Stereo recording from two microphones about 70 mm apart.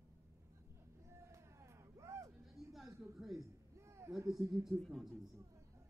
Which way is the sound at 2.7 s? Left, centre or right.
Centre.